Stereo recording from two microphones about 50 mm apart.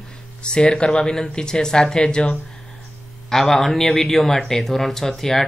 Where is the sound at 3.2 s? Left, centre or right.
Centre.